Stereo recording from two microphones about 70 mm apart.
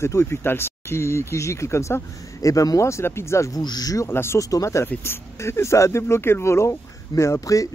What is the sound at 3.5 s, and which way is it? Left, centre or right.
Speech, left.